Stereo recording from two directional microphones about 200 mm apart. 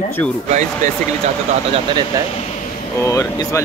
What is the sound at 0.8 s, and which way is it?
Speech, 35° right (ahead or behind).